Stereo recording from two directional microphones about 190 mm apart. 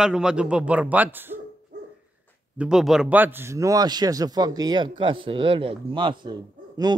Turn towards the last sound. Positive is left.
turn(degrees=-20)  # may be behind; listen again after turning